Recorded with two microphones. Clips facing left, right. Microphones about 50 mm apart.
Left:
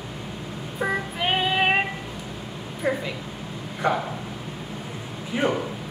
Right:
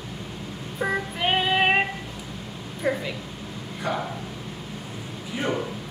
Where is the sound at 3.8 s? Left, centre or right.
Left.